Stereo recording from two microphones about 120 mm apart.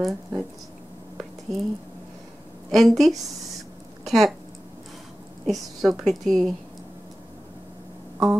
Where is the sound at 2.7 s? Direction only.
Centre (ahead or behind).